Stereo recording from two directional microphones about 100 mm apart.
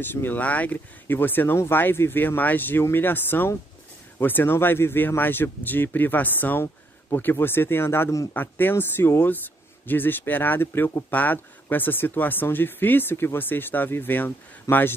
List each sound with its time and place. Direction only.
0.0 s speech: 20° left (ahead or behind)